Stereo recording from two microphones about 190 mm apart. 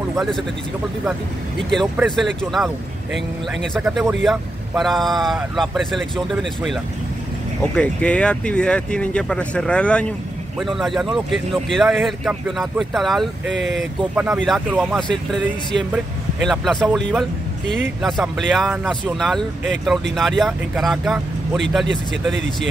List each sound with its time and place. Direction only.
0.2 s speech: centre (ahead or behind)
1.7 s speech: centre (ahead or behind)
3.7 s speech: centre (ahead or behind)
13.5 s speech: 70° right (ahead or behind)
13.7 s speech: 5° right (ahead or behind)
18.0 s speech: centre (ahead or behind)